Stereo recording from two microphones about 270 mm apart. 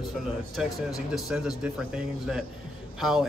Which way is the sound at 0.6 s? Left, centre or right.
Centre.